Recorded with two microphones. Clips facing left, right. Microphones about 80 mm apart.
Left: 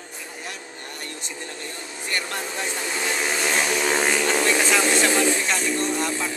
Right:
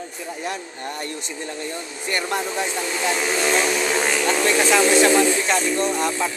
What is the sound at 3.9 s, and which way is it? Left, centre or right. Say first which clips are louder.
Speech: right 1 dB; centre.